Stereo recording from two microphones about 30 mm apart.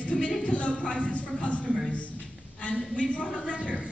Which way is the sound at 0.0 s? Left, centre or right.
Left.